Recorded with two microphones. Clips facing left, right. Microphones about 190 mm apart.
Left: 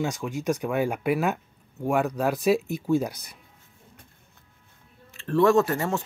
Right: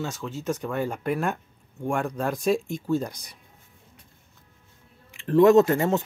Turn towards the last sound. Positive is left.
turn(degrees=-20)  # may be behind; listen again after turning